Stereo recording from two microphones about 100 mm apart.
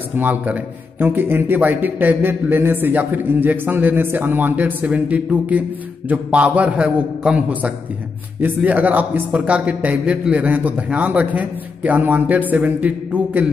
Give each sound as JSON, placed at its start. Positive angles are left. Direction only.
{"t": 0.2, "sound": "a man's voice", "side_deg": -20}